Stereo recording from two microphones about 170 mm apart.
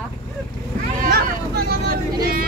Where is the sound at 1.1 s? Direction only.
70° right (ahead or behind).